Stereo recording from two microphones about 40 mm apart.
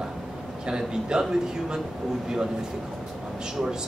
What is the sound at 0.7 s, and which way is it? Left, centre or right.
Speech, centre.